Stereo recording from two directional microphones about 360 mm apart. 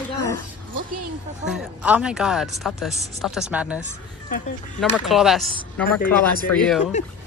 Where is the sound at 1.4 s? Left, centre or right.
Centre.